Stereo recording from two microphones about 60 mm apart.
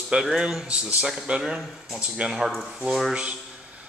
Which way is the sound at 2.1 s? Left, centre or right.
Centre.